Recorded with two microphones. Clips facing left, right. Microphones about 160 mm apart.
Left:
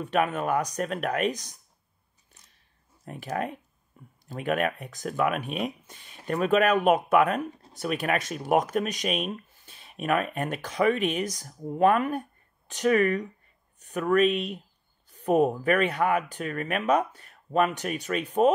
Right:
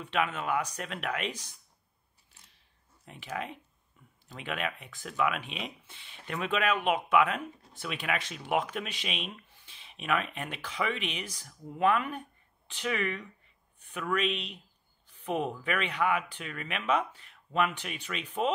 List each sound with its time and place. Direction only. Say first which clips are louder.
0.0 s speech: left 6 dB; 45° left (ahead or behind)
3.1 s speech: left 7 dB; 45° left (ahead or behind)
4.0 s a sound: left 9 dB; 40° left (ahead or behind)
4.3 s speech: left 9 dB; 45° left (ahead or behind)